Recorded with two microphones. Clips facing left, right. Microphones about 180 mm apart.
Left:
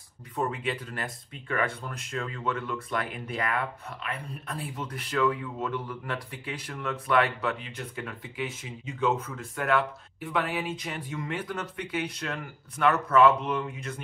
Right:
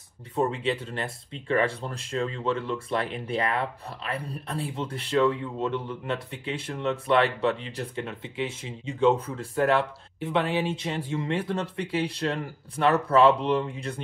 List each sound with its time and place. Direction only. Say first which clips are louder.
0.4 s speech: right 4 dB; 25° right (ahead or behind)